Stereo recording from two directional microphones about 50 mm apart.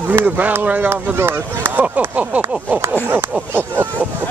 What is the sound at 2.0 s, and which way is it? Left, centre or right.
Speech, right.